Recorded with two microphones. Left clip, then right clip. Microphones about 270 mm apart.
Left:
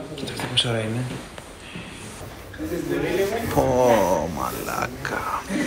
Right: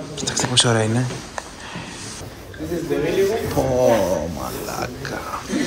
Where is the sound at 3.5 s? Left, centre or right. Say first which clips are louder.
Even; centre.